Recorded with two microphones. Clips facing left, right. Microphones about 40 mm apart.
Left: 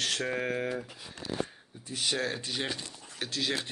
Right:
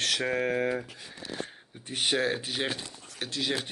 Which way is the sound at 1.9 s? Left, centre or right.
Right.